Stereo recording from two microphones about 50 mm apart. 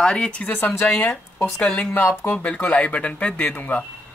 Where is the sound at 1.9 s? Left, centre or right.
Left.